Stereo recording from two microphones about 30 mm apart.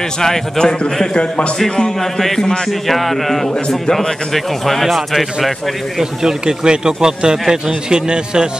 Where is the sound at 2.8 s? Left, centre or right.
Centre.